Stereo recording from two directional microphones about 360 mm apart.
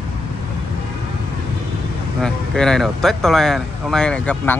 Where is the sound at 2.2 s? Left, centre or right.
Centre.